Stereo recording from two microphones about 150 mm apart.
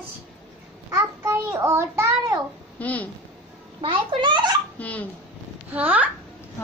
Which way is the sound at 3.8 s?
35° right (ahead or behind).